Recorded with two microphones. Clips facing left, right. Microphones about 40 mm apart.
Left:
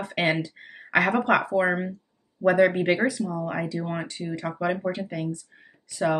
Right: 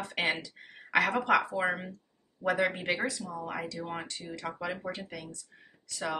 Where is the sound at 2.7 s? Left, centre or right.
Left.